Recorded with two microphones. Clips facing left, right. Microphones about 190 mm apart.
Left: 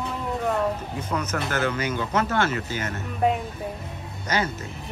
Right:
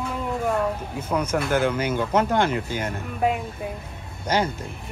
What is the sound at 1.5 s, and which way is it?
Speech, 10° right (ahead or behind).